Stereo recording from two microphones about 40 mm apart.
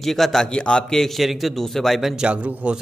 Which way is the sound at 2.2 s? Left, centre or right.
Right.